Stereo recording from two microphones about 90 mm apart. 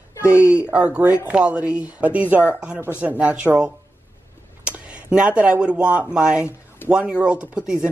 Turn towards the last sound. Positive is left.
turn(degrees=-10)  # may be behind; listen again after turning